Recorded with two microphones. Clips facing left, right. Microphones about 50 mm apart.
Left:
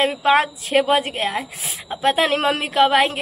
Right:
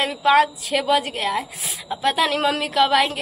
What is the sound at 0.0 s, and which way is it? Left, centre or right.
A woman's voice, left.